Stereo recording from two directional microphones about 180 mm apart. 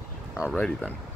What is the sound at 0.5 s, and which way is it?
Speech, 10° left (ahead or behind).